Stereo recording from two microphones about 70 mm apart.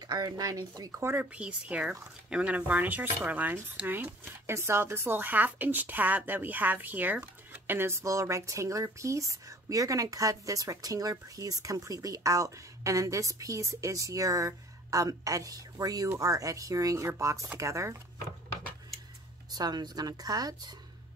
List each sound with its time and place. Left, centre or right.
0.1 s speech: right
1.1 s speech: centre
4.5 s speech: right
7.7 s speech: right
19.5 s speech: right